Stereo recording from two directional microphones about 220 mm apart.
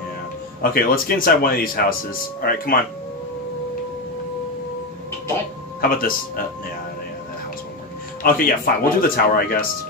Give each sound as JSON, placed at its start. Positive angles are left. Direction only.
{"t": 0.6, "sound": "speech", "side_deg": 40}
{"t": 5.8, "sound": "speech", "side_deg": 40}
{"t": 8.2, "sound": "speech", "side_deg": 40}